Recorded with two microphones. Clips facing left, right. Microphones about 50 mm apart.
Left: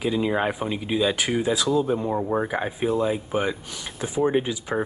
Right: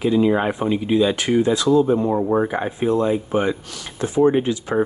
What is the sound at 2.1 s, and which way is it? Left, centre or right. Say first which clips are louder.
Speech: right 5 dB; centre.